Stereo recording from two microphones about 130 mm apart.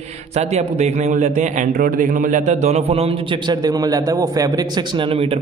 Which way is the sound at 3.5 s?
30° right (ahead or behind).